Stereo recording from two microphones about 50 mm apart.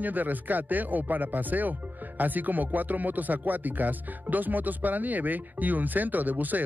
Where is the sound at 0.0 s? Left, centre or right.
Right.